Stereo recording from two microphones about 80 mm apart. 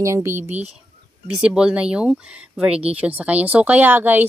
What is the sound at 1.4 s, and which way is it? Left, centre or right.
Speech, centre.